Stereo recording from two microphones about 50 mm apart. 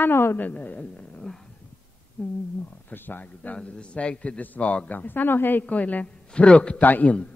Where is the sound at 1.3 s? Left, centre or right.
Left.